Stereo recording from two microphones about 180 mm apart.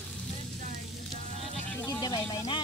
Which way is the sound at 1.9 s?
20° left (ahead or behind).